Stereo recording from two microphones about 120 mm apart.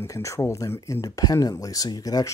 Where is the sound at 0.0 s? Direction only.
25° left (ahead or behind).